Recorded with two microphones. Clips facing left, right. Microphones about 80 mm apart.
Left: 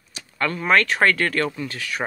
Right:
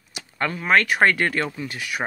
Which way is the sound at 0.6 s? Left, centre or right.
Centre.